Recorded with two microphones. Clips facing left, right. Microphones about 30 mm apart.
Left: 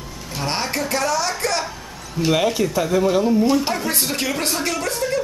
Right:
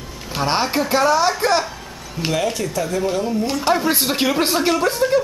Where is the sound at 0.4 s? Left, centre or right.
Centre.